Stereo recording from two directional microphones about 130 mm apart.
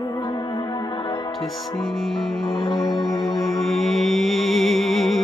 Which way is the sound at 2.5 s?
35° left (ahead or behind).